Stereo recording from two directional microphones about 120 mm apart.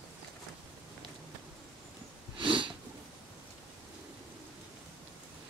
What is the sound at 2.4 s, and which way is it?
Sniff, 45° right (ahead or behind).